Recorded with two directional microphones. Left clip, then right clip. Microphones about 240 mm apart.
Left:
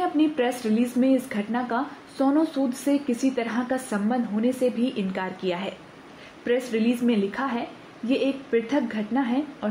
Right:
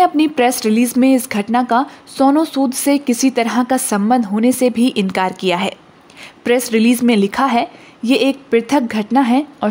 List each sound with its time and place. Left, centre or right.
0.0 s speech: right